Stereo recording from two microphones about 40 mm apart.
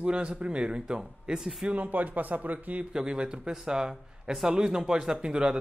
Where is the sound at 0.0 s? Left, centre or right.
Right.